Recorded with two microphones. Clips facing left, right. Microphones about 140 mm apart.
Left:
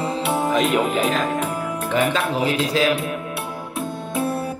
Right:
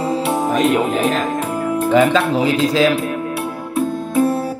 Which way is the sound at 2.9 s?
Centre (ahead or behind).